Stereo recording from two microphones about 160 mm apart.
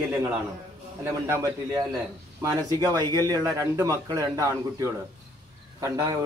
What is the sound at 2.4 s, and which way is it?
A man's voice, 25° right (ahead or behind).